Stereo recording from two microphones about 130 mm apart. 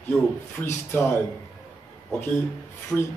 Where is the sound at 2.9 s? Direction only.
5° left (ahead or behind).